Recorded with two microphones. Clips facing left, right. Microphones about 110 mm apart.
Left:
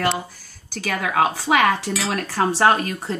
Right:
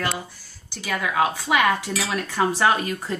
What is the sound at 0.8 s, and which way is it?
Speech, 65° left (ahead or behind).